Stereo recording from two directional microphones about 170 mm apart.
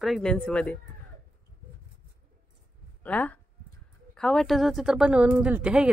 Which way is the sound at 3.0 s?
10° left (ahead or behind).